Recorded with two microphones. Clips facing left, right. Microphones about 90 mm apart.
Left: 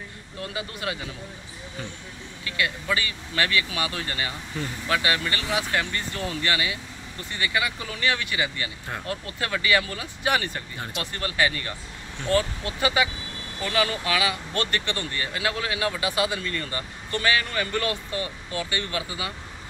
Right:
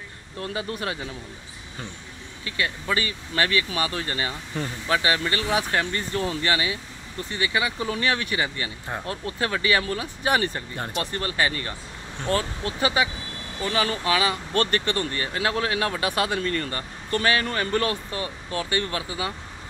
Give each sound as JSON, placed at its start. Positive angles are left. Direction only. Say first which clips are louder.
{"t": 0.4, "sound": "speech", "louder": "right 3 dB", "side_deg": -35}
{"t": 2.4, "sound": "speech", "louder": "even", "side_deg": -30}
{"t": 7.9, "sound": "speech", "louder": "even", "side_deg": -40}
{"t": 8.8, "sound": "speech", "louder": "right 3 dB", "side_deg": -25}